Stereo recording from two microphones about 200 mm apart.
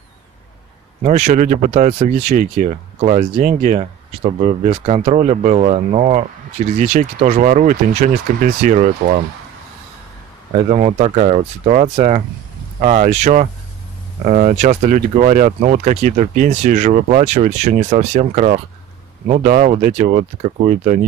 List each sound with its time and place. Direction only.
1.0 s speech: 35° right (ahead or behind)
10.7 s speech: 35° right (ahead or behind)